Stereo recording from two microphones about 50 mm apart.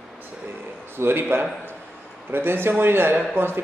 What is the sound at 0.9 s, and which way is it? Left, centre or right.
A man's voice, right.